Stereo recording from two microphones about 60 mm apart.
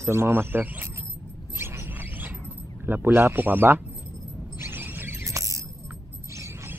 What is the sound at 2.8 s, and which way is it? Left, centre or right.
Speech, right.